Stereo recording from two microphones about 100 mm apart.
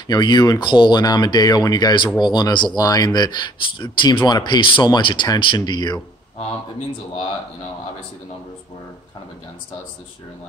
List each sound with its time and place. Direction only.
0.1 s speech: 45° left (ahead or behind)